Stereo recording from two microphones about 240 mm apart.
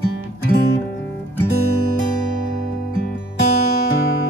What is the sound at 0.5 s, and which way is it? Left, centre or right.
Music, left.